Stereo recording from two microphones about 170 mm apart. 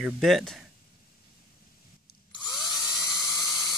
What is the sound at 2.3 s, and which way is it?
Drill, 25° left (ahead or behind).